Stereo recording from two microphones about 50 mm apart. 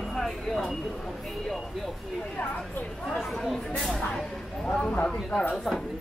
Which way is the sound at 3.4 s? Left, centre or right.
Centre.